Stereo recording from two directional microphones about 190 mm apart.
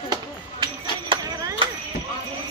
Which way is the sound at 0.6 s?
25° right (ahead or behind).